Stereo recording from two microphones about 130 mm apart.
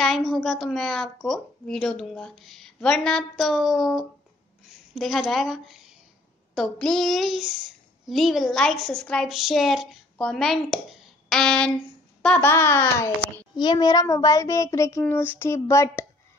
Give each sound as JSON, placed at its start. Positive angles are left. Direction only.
{"t": 0.0, "sound": "a woman's voice", "side_deg": 0}
{"t": 12.4, "sound": "speech", "side_deg": 20}
{"t": 13.6, "sound": "speech", "side_deg": 30}